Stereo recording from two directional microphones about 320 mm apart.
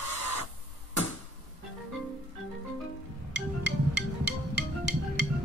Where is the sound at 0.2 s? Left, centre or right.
Left.